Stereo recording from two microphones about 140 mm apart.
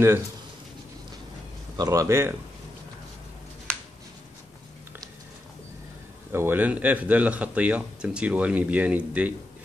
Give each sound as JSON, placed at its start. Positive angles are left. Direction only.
{"t": 1.8, "sound": "speech", "side_deg": -25}
{"t": 6.3, "sound": "speech", "side_deg": -15}